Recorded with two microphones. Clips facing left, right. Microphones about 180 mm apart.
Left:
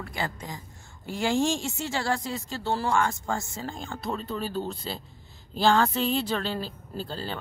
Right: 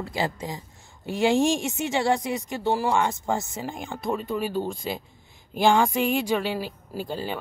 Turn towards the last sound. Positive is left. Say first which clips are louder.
# right 4 dB
turn(degrees=-15)  # may be behind; listen again after turning